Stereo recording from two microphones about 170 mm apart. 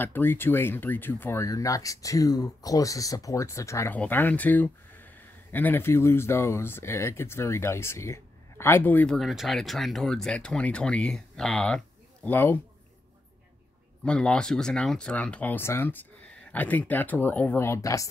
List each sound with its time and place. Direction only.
0.0 s speech: 10° left (ahead or behind)
14.0 s speech: 5° left (ahead or behind)